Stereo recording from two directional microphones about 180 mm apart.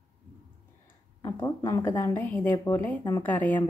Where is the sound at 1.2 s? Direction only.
15° left (ahead or behind).